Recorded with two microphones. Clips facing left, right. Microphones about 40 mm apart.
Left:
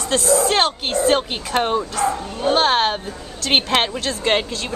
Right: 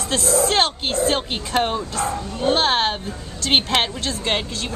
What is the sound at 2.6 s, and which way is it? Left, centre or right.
A woman's voice, centre.